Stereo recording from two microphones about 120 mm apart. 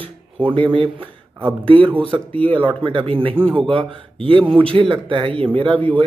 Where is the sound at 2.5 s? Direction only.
45° right (ahead or behind).